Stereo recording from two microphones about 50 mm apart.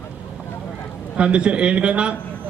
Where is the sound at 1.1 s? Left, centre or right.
Right.